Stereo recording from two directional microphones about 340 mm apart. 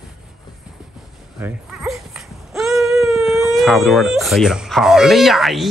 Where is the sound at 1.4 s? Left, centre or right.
Centre.